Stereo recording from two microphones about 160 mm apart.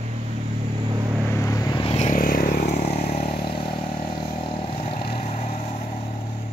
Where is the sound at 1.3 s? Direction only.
20° left (ahead or behind).